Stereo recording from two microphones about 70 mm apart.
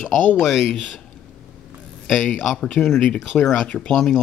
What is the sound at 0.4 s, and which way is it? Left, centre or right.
Speech, centre.